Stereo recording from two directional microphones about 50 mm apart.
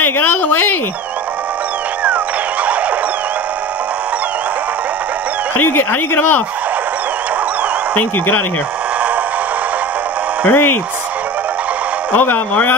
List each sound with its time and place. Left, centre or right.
0.0 s a sound: left
5.6 s speech: left
7.9 s speech: left
10.4 s speech: left
12.2 s speech: left